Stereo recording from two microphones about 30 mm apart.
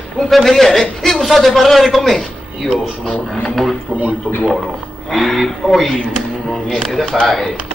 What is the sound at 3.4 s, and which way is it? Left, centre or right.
Speech, centre.